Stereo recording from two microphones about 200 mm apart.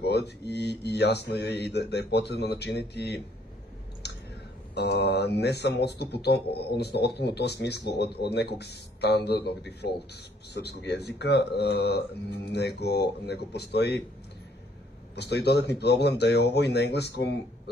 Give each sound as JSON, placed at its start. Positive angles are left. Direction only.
{"t": 0.0, "sound": "a man's voice", "side_deg": 55}
{"t": 4.0, "sound": "chewing", "side_deg": 55}
{"t": 4.7, "sound": "a man's voice", "side_deg": 55}
{"t": 15.1, "sound": "a man's voice", "side_deg": 55}